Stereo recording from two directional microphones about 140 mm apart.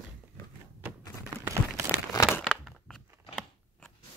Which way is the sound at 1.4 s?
20° right (ahead or behind).